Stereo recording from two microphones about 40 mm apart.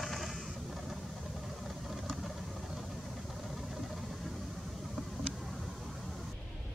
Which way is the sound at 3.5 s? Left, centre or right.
Centre.